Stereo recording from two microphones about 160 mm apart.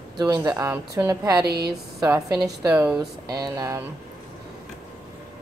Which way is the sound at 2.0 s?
20° right (ahead or behind).